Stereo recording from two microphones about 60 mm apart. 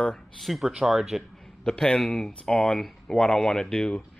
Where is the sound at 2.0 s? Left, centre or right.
Centre.